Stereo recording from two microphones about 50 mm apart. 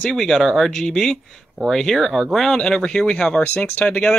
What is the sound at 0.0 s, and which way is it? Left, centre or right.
Speech, centre.